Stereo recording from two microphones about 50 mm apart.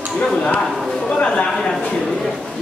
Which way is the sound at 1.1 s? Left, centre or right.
Left.